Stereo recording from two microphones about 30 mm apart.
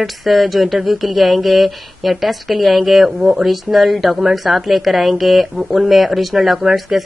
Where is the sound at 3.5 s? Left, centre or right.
Centre.